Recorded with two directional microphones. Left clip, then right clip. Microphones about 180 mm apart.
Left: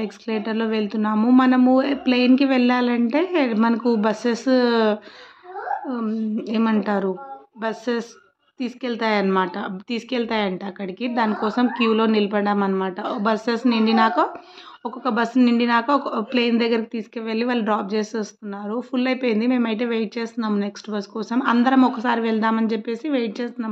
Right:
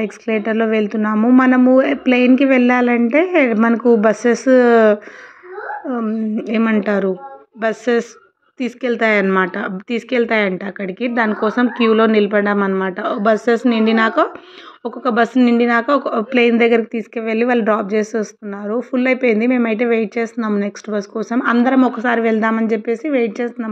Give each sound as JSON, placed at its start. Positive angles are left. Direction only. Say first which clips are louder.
{"t": 0.0, "sound": "speech", "louder": "right 7 dB", "side_deg": -20}